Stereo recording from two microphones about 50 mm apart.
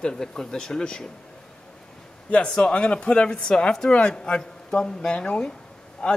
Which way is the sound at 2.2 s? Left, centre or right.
Left.